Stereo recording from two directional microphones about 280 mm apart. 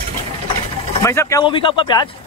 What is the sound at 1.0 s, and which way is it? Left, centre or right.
Speech, centre.